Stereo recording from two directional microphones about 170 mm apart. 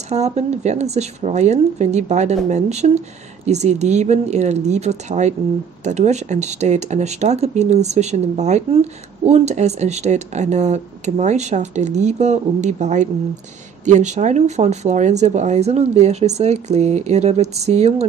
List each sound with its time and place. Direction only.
0.1 s speech: 40° right (ahead or behind)